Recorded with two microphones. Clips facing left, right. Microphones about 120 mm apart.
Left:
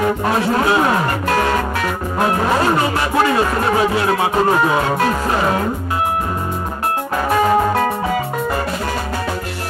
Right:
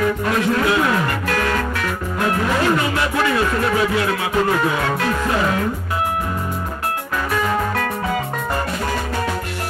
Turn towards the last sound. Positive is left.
turn(degrees=30)  # may be behind; listen again after turning